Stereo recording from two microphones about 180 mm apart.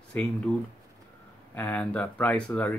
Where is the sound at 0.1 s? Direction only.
5° left (ahead or behind).